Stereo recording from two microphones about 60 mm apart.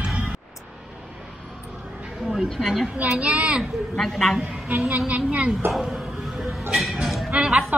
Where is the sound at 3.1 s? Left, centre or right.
Centre.